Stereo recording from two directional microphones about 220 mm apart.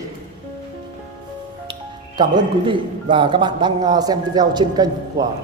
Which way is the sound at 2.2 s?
20° right (ahead or behind).